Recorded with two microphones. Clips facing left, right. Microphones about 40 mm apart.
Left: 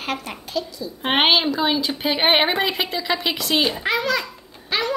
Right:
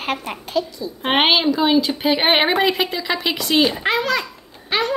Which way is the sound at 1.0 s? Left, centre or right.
Centre.